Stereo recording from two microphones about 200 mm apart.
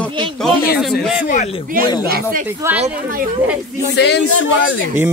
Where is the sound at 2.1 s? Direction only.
45° right (ahead or behind).